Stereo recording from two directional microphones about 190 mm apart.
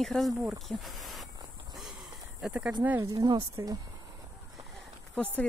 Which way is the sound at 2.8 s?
15° right (ahead or behind).